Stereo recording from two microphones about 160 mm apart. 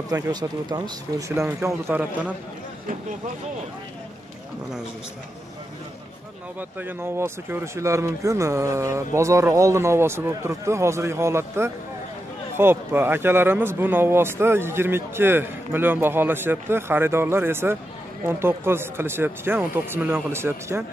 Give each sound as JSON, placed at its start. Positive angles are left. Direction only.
{"t": 0.1, "sound": "speech", "side_deg": -25}
{"t": 6.8, "sound": "speech", "side_deg": -15}